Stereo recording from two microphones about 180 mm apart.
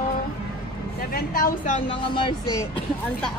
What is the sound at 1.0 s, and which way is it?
Speech, 55° left (ahead or behind).